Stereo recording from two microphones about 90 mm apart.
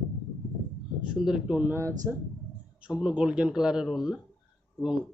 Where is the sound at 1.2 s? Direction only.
10° right (ahead or behind).